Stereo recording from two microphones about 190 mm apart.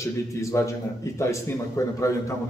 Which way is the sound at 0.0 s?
15° left (ahead or behind).